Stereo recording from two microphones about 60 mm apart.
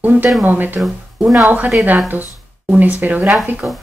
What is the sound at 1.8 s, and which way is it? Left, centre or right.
A woman's voice, right.